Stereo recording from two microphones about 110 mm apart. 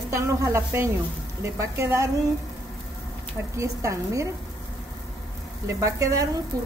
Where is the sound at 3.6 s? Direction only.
30° right (ahead or behind).